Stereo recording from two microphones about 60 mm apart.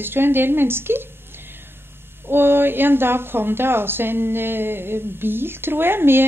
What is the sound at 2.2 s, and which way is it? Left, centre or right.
A woman's voice, right.